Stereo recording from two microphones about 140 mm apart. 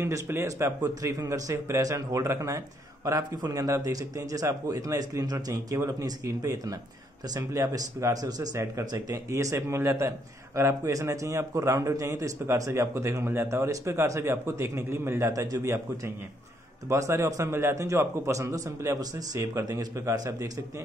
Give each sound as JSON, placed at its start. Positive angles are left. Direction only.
{"t": 0.0, "sound": "speech", "side_deg": -20}